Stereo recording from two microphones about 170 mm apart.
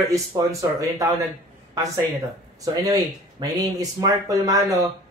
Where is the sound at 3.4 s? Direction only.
20° right (ahead or behind).